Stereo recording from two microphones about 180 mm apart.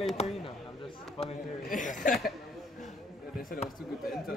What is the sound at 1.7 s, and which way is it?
Speech, 45° left (ahead or behind).